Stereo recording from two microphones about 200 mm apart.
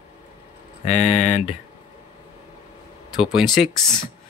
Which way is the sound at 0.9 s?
35° left (ahead or behind).